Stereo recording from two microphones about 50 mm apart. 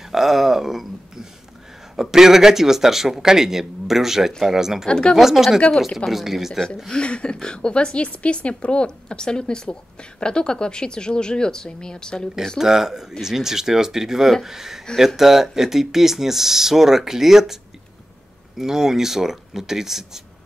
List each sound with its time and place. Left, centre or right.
0.1 s speech: centre
4.8 s speech: centre
5.1 s speech: centre
6.9 s a woman's voice: centre
12.5 s speech: centre
18.6 s speech: centre